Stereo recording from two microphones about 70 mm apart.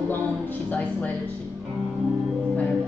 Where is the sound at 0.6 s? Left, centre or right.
Left.